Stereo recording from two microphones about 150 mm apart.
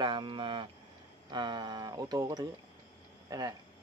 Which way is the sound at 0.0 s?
35° right (ahead or behind).